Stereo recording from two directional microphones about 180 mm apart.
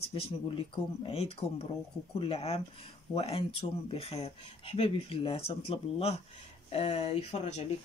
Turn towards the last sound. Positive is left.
turn(degrees=35)  # may be behind; listen again after turning